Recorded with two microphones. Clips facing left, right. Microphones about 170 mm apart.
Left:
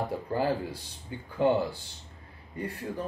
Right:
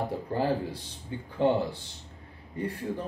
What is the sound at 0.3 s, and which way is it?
A man's voice, 30° right (ahead or behind).